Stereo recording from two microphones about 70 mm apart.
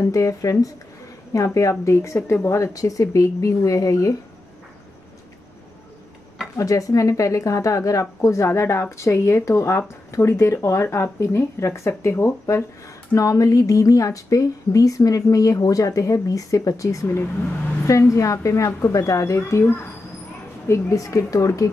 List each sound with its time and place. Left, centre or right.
0.0 s speech: left
6.5 s speech: left
13.1 s speech: left
18.9 s speech: left
20.9 s speech: left